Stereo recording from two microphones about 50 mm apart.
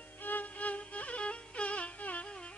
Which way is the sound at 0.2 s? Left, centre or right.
Left.